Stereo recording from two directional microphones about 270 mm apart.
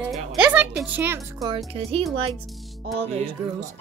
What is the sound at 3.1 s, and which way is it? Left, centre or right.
Music, centre.